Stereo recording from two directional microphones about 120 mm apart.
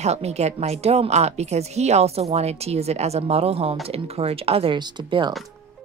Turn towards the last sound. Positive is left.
turn(degrees=-45)  # may be behind; listen again after turning